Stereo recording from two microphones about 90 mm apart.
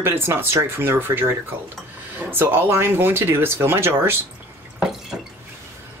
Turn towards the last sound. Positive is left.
turn(degrees=-5)  # may be behind; listen again after turning